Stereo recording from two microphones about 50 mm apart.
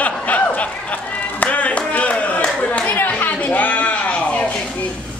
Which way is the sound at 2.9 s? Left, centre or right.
Left.